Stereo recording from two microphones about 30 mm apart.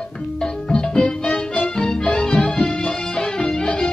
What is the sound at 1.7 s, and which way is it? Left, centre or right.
Music, left.